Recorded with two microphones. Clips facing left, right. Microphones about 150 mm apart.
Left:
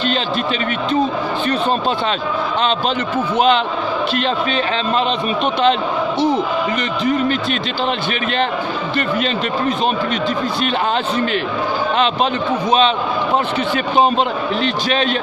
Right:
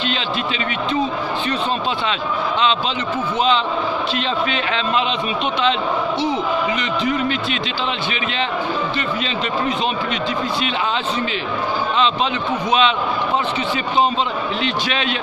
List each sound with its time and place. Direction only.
3.3 s a man's voice: 60° left (ahead or behind)
7.1 s speech: 45° left (ahead or behind)
14.6 s a man's voice: 40° left (ahead or behind)